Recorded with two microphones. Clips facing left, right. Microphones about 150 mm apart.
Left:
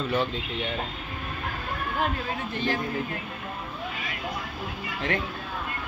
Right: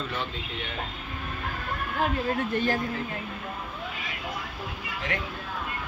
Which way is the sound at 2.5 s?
45° right (ahead or behind).